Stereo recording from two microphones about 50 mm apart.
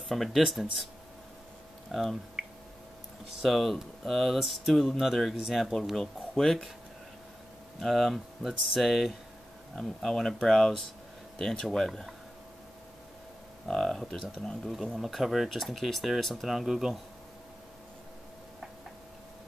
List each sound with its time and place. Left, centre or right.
0.1 s speech: centre
1.9 s speech: centre
2.4 s squish: centre
3.3 s speech: centre
7.8 s speech: centre
13.7 s speech: centre